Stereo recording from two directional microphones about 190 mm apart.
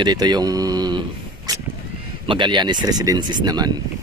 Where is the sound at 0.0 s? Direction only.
20° right (ahead or behind).